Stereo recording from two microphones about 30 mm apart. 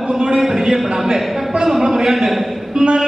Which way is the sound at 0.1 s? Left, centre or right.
Right.